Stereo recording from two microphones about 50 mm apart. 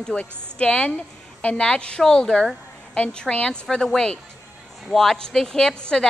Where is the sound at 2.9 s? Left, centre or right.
Left.